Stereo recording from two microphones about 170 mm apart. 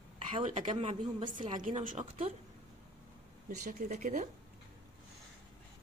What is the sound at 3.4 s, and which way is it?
Speech, 45° right (ahead or behind).